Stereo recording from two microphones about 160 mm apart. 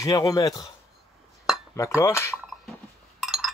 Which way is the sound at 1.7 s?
15° left (ahead or behind).